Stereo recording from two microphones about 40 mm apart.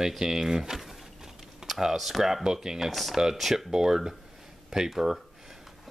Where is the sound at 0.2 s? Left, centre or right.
Centre.